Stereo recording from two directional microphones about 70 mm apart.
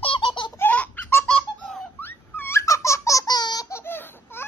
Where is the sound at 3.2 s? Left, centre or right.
Left.